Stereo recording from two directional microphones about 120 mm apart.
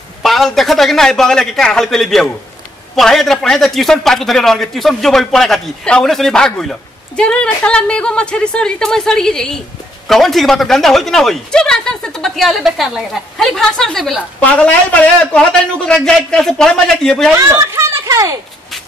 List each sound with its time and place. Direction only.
0.2 s a man's voice: centre (ahead or behind)
17.4 s speech: 20° right (ahead or behind)